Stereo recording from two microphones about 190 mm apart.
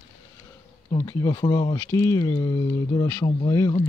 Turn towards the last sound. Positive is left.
turn(degrees=20)  # may be behind; listen again after turning